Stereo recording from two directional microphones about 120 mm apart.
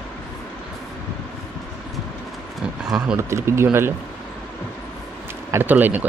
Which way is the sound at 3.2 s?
25° right (ahead or behind).